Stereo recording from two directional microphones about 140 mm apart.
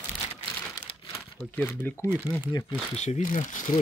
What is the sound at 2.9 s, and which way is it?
Speech, 55° left (ahead or behind).